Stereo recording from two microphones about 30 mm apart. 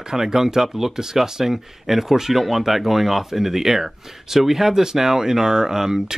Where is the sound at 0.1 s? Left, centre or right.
Centre.